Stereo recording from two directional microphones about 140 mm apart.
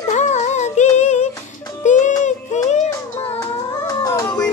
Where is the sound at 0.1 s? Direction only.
55° left (ahead or behind).